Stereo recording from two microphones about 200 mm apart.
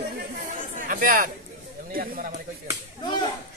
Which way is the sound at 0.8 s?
45° right (ahead or behind).